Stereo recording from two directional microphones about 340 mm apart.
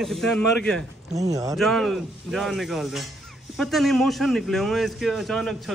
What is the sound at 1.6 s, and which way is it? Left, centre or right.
A man's voice, centre.